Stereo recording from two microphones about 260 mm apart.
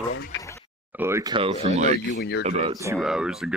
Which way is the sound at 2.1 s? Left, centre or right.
Left.